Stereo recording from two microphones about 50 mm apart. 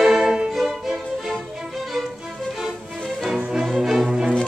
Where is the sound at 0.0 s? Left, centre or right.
Centre.